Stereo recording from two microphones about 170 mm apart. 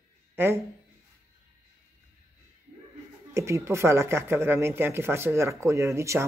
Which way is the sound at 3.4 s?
15° right (ahead or behind).